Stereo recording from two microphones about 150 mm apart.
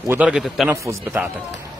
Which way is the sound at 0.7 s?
20° right (ahead or behind).